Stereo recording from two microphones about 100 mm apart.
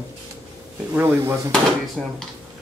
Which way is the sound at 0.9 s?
25° right (ahead or behind).